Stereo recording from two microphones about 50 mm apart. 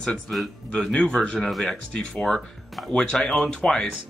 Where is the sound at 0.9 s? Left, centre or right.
Left.